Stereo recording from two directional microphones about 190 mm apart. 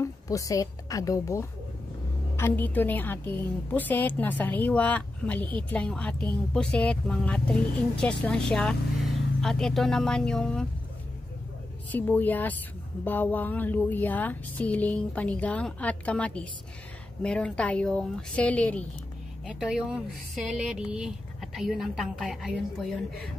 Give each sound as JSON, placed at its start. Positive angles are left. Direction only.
{"t": 0.0, "sound": "a woman's voice", "side_deg": 15}
{"t": 11.9, "sound": "a woman's voice", "side_deg": 10}
{"t": 19.4, "sound": "speech", "side_deg": -5}